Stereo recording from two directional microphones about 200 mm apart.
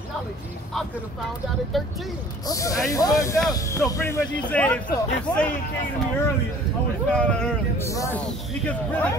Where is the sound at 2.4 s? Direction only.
15° left (ahead or behind).